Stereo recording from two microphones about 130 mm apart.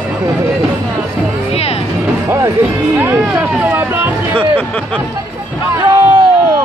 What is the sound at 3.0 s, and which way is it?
Speech, 10° right (ahead or behind).